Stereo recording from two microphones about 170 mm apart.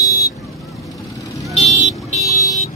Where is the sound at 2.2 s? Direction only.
20° left (ahead or behind).